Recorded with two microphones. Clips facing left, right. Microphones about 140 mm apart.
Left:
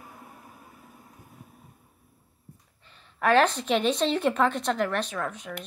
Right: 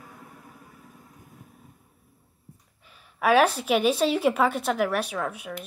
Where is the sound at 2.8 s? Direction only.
10° right (ahead or behind).